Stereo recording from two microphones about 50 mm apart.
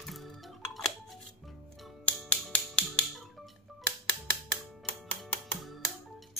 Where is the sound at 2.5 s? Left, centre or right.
Left.